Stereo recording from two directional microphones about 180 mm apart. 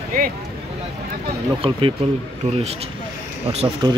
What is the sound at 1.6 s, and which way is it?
Speech, 30° right (ahead or behind).